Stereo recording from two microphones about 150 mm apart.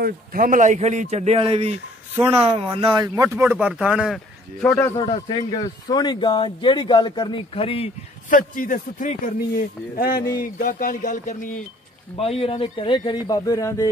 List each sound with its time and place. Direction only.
0.0 s speech: 70° right (ahead or behind); by 3.1 s 30° right (ahead or behind)
3.2 s speech: 20° right (ahead or behind)
3.5 s speech: 5° right (ahead or behind)
4.9 s speech: 35° left (ahead or behind)
8.3 s speech: 65° left (ahead or behind)
10.4 s speech: 65° left (ahead or behind)
12.2 s speech: 40° left (ahead or behind); by 13.8 s 20° left (ahead or behind)